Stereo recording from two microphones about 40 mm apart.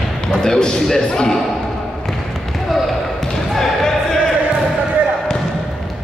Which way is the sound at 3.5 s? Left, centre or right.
Centre.